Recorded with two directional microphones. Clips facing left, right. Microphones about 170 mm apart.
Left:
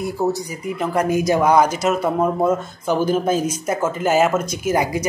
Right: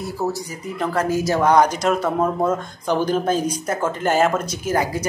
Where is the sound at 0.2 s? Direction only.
15° left (ahead or behind).